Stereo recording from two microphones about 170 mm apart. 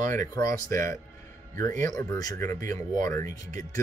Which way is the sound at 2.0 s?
20° left (ahead or behind).